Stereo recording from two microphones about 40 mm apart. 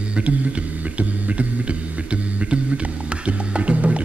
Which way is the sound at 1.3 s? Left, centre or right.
Right.